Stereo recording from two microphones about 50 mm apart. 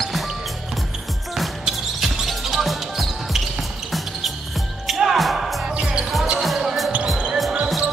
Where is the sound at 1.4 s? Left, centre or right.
Centre.